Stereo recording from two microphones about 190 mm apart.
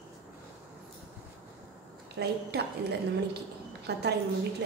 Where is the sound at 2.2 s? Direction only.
60° right (ahead or behind).